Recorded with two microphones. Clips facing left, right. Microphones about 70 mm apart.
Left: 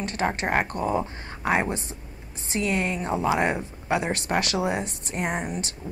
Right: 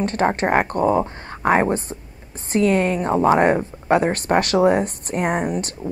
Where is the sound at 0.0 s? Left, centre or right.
Right.